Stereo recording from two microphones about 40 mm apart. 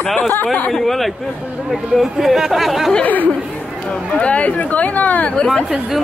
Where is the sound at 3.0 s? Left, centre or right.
Left.